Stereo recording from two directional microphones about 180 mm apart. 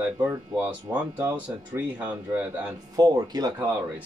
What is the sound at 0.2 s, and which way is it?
Speech, 10° right (ahead or behind).